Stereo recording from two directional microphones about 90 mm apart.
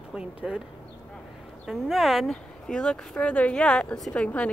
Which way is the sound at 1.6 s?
Centre (ahead or behind).